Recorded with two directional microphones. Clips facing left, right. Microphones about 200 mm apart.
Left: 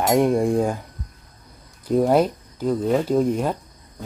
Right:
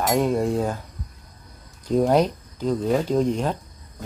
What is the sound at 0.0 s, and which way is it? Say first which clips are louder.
Speech: left 3 dB; 15° left (ahead or behind).